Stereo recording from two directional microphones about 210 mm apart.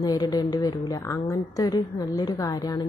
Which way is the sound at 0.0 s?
20° left (ahead or behind).